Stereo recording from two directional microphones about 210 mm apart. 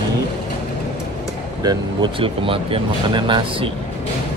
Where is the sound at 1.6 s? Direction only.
20° right (ahead or behind).